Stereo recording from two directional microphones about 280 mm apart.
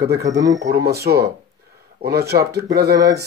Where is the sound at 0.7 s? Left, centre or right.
Right.